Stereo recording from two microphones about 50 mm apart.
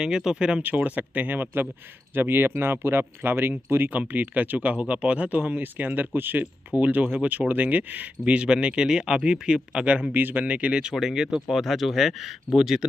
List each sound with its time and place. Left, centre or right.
0.0 s speech: centre
0.6 s speech: right
3.9 s speech: right
10.1 s speech: right; by 12.8 s centre